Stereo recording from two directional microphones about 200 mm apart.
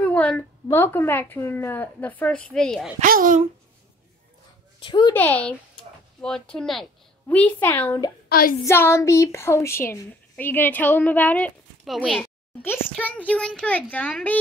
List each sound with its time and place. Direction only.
0.0 s a woman's voice: 5° left (ahead or behind)
3.0 s a child's voice: 45° right (ahead or behind)
4.7 s speech: 25° left (ahead or behind)
5.1 s a woman's voice: 10° left (ahead or behind)
8.3 s speech: 45° left (ahead or behind)
8.6 s a woman's voice: 15° left (ahead or behind)